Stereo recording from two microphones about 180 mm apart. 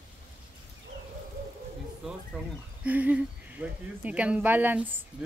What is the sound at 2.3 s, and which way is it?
Speech, 5° right (ahead or behind).